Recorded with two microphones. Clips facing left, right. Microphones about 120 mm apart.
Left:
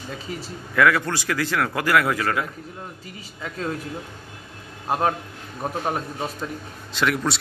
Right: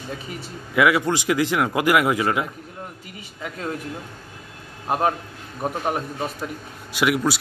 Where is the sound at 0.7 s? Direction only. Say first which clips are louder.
Right 1 dB; 15° right (ahead or behind).